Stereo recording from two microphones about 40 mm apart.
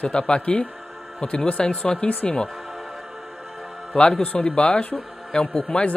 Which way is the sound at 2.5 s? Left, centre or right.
Centre.